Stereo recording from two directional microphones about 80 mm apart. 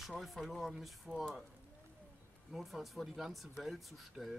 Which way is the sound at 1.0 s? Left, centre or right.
Centre.